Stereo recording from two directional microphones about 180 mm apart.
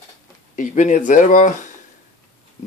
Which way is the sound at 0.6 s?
45° left (ahead or behind).